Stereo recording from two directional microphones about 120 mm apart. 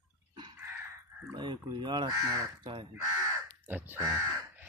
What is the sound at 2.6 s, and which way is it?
Speech, 45° right (ahead or behind).